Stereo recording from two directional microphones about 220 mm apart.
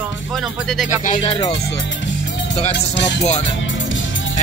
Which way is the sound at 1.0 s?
30° left (ahead or behind).